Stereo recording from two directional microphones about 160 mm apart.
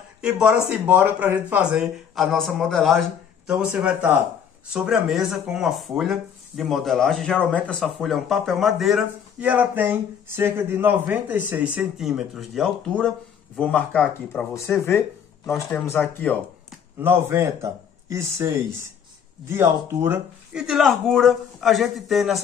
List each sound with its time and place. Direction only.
0.2 s speech: 5° right (ahead or behind); by 16.3 s 15° left (ahead or behind)
17.0 s speech: 15° right (ahead or behind)
20.5 s speech: 5° right (ahead or behind)